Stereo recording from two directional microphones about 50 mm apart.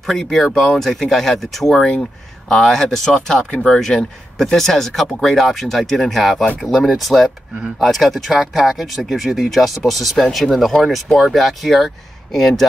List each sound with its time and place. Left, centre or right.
0.0 s speech: centre
3.5 s speech: centre
3.8 s speech: centre